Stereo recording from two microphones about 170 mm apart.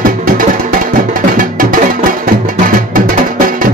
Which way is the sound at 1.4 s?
55° right (ahead or behind).